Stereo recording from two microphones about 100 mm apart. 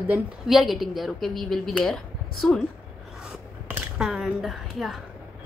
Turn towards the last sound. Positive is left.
turn(degrees=0)  # may be behind; listen again after turning